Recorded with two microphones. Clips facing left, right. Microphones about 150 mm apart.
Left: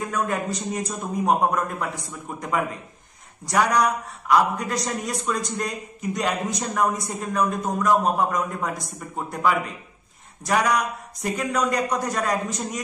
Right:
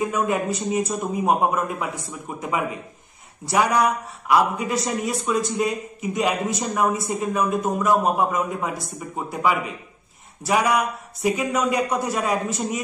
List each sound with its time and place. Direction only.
0.0 s speech: 10° right (ahead or behind)